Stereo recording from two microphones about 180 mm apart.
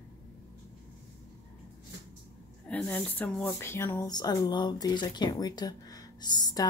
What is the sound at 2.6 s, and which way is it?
Speech, 5° left (ahead or behind).